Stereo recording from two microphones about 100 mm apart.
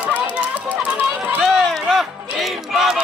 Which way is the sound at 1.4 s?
5° left (ahead or behind).